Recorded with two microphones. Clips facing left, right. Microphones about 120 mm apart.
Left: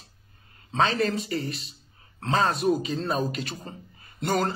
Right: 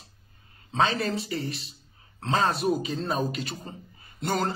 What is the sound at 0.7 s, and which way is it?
A man's voice, 35° left (ahead or behind).